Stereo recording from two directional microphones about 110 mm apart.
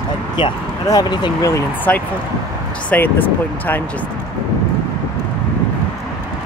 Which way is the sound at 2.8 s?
15° left (ahead or behind).